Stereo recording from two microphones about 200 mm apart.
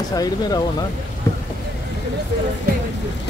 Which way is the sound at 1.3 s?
10° left (ahead or behind).